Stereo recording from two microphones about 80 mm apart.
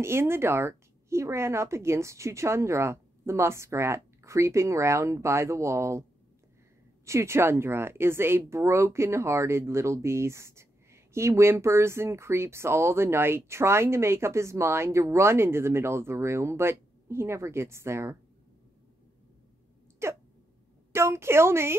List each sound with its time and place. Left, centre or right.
0.0 s speech: right
7.1 s speech: right
20.0 s a sound: right
20.9 s speech: right